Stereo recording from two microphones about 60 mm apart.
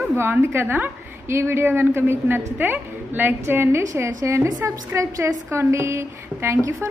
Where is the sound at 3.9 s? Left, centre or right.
Right.